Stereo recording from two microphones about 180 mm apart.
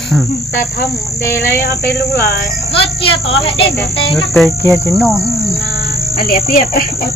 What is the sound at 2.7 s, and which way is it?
Speech, 30° left (ahead or behind).